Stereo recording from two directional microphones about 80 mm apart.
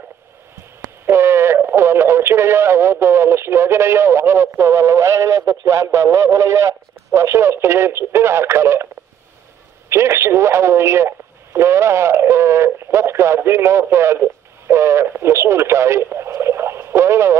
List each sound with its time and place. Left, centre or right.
1.0 s radio: right
1.6 s speech: right
9.8 s speech: right